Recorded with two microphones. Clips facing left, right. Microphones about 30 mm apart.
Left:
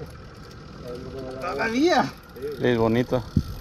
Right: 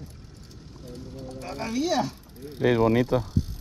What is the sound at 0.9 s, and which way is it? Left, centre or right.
Speech, left.